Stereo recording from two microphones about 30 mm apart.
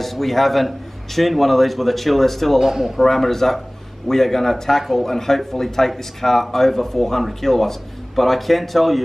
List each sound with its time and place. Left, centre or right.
0.0 s a man's voice: centre
2.6 s a man's voice: centre
3.0 s a man's voice: centre